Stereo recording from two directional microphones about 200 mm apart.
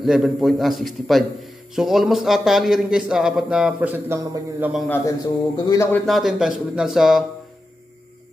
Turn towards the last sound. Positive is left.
turn(degrees=0)  # may be behind; listen again after turning